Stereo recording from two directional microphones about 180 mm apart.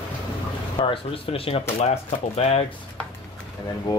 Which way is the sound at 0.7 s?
30° left (ahead or behind).